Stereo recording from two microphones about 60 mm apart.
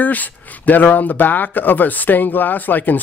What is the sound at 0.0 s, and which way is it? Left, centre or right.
Speech, left.